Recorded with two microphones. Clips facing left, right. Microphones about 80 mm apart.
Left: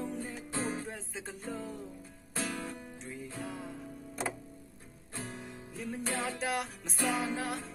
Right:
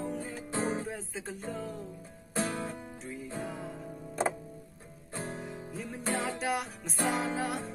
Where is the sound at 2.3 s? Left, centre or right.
Right.